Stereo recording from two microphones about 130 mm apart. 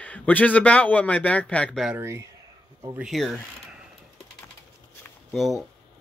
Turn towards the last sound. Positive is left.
turn(degrees=0)  # may be behind; listen again after turning